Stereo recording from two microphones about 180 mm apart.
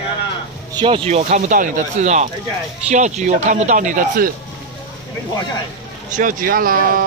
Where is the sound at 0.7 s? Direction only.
30° right (ahead or behind); by 4.3 s 50° right (ahead or behind).